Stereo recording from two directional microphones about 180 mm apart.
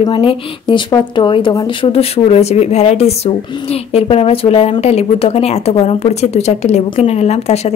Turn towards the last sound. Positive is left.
turn(degrees=35)  # may be behind; listen again after turning